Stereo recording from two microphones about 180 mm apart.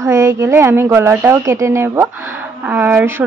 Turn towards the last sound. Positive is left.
turn(degrees=-10)  # may be behind; listen again after turning